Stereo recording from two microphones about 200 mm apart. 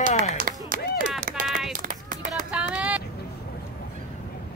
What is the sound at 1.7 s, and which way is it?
Run, 45° right (ahead or behind).